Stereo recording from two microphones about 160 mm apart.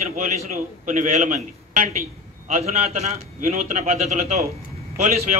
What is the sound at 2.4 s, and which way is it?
A man's voice, 45° right (ahead or behind).